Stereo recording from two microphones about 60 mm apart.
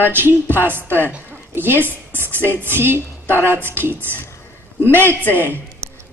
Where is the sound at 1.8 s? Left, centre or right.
Right.